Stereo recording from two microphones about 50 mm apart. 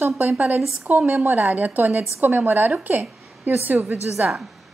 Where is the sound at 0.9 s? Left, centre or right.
Right.